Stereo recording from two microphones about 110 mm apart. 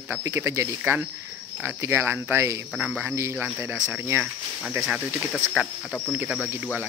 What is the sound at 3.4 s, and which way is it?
Speech, 5° right (ahead or behind).